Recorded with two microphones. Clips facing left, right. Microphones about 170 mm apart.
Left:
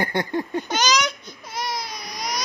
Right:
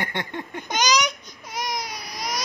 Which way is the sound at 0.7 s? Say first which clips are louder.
Right 4 dB; 15° right (ahead or behind).